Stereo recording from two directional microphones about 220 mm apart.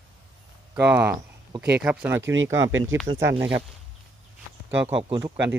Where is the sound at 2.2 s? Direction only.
60° right (ahead or behind).